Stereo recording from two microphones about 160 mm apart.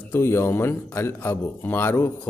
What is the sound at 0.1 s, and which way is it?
A man's voice, 15° left (ahead or behind).